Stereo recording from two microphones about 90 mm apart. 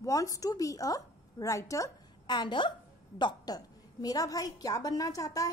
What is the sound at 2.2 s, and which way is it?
A woman's voice, 55° left (ahead or behind).